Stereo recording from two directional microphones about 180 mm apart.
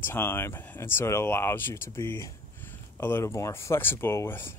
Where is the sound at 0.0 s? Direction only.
10° left (ahead or behind).